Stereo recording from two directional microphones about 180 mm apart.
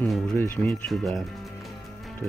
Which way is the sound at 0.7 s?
Centre (ahead or behind).